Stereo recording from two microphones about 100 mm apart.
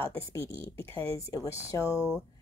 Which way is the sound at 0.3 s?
30° left (ahead or behind).